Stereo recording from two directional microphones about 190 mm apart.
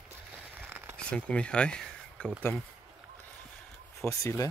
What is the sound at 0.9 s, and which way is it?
Speech, 5° left (ahead or behind).